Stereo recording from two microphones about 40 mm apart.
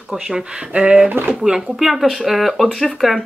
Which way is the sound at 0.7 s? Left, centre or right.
Right.